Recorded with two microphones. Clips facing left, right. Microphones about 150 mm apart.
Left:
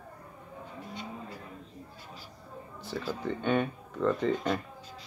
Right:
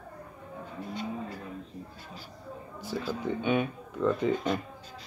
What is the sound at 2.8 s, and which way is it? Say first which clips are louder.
Speech: right 2 dB; 5° right (ahead or behind).